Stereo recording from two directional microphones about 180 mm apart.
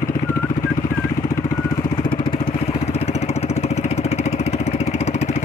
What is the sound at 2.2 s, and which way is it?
Vehicle, 30° left (ahead or behind).